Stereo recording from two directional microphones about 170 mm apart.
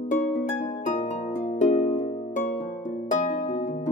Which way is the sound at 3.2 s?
45° left (ahead or behind).